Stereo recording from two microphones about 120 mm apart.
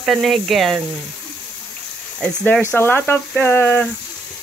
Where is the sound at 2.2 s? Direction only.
15° left (ahead or behind).